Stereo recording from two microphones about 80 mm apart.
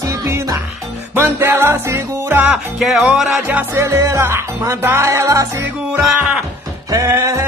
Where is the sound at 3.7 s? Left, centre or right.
Right.